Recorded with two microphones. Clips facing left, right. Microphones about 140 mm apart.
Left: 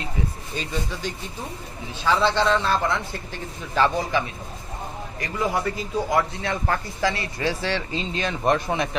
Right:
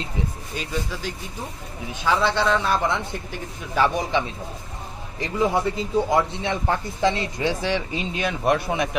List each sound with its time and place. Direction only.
2.0 s a man's voice: 10° right (ahead or behind)
5.2 s a man's voice: 25° right (ahead or behind)